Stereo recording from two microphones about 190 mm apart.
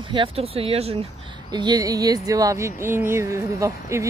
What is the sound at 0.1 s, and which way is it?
Speech, 30° right (ahead or behind).